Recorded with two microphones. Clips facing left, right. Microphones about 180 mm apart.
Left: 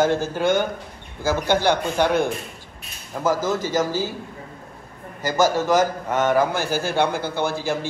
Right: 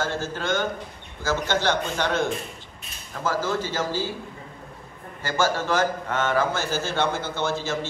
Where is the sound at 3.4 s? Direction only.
45° left (ahead or behind).